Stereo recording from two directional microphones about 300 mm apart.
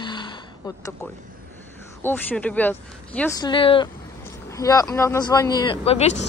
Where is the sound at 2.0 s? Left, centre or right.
Centre.